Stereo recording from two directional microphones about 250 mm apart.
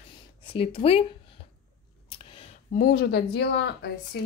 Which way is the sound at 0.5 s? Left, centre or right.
Left.